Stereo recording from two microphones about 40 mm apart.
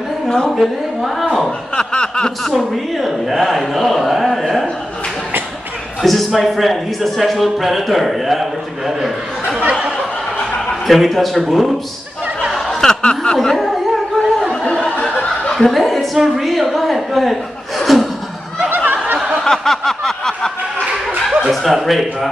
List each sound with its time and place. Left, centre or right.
0.5 s speech: centre
1.8 s snicker: left
2.5 s speech: centre
6.0 s speech: centre
9.6 s a sound: right
10.7 s a man's voice: centre
12.5 s chuckle: centre
13.0 s a sound: centre
14.7 s chuckle: left
15.5 s a woman's voice: centre
19.4 s a sound: centre
21.5 s speech: centre